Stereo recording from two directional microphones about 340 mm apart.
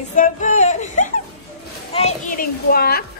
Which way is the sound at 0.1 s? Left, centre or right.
Left.